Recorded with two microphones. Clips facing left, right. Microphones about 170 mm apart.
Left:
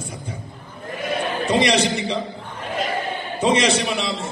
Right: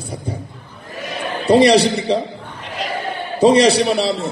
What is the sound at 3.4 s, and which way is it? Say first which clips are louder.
Speech: right 7 dB; 35° right (ahead or behind).